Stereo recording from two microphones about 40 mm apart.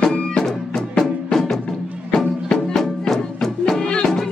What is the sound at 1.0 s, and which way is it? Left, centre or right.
Music, centre.